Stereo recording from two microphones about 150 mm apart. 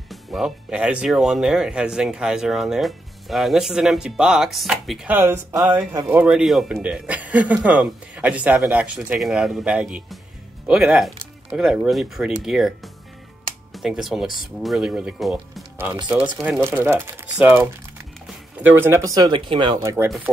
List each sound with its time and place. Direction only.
0.1 s speech: centre (ahead or behind)
16.6 s speech: 15° right (ahead or behind)